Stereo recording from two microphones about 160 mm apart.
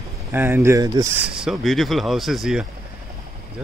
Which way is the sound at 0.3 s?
15° right (ahead or behind).